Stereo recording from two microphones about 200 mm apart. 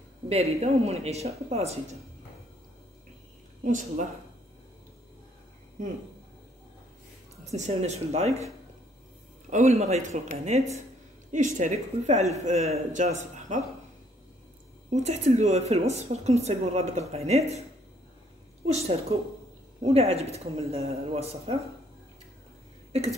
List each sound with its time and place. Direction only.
0.3 s a woman's voice: 30° right (ahead or behind)
3.6 s a woman's voice: 40° right (ahead or behind)
7.5 s a woman's voice: 35° right (ahead or behind)
9.5 s a woman's voice: 35° right (ahead or behind)
14.9 s a woman's voice: 35° right (ahead or behind)
18.7 s a woman's voice: 30° right (ahead or behind)